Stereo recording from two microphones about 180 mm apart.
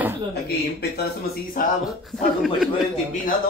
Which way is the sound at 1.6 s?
50° left (ahead or behind).